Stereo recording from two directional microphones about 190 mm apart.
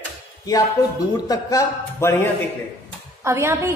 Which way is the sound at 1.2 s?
20° left (ahead or behind).